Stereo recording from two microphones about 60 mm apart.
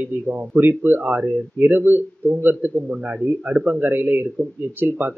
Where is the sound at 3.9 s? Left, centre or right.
Right.